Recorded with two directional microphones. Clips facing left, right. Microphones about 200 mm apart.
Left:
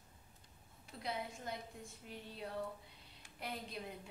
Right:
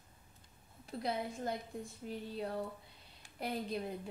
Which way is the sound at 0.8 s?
35° right (ahead or behind).